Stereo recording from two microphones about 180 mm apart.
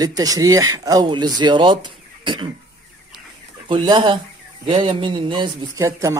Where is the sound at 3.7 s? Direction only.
25° right (ahead or behind).